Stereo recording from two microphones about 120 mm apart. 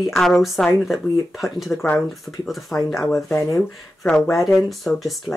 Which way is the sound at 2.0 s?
Centre (ahead or behind).